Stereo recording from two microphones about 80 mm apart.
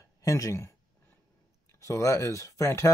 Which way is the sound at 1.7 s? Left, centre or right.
Left.